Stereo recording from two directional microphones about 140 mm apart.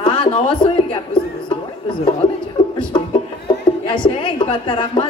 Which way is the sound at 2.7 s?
35° left (ahead or behind).